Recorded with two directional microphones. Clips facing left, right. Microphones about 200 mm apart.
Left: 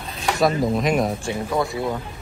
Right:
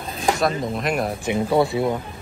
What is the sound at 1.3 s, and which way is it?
Speech, 25° right (ahead or behind).